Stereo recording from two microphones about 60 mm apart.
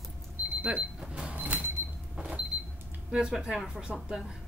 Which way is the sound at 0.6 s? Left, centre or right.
Centre.